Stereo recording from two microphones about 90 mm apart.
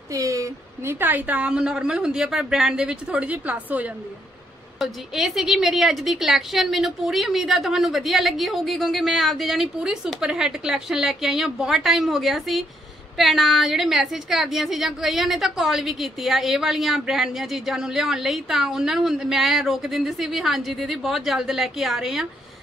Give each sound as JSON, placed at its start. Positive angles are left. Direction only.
{"t": 0.1, "sound": "speech", "side_deg": -40}
{"t": 0.9, "sound": "a woman's voice", "side_deg": -20}
{"t": 4.7, "sound": "a woman's voice", "side_deg": -5}